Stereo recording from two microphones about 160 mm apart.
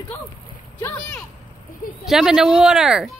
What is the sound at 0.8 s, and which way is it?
Speech, 15° left (ahead or behind).